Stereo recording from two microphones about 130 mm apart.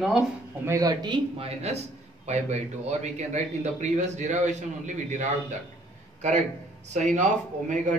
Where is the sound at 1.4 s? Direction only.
55° right (ahead or behind); by 5.2 s 70° right (ahead or behind).